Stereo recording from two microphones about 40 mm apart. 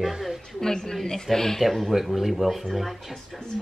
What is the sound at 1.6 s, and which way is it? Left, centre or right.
A woman's voice, centre.